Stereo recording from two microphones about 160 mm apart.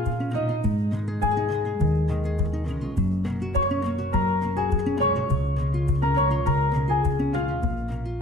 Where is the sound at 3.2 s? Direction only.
Centre (ahead or behind).